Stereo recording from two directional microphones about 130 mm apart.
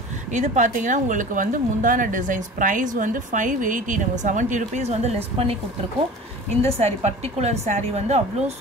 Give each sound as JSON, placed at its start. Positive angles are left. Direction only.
{"t": 0.3, "sound": "a woman's voice", "side_deg": -70}
{"t": 4.2, "sound": "speech", "side_deg": -75}
{"t": 6.6, "sound": "a woman's voice", "side_deg": -55}